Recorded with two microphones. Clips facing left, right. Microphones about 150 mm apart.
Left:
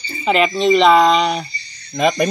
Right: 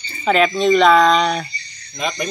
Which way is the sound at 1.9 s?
80° left.